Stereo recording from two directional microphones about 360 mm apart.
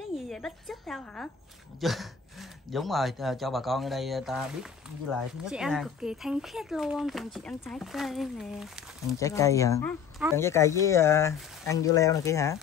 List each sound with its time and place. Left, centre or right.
0.1 s speech: centre